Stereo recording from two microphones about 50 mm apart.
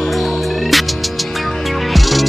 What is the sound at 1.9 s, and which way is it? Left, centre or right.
Music, centre.